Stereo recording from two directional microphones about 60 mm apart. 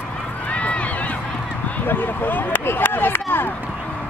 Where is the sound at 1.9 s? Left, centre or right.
Left.